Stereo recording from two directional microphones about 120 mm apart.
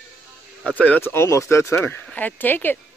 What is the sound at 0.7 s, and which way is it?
Speech, 10° left (ahead or behind).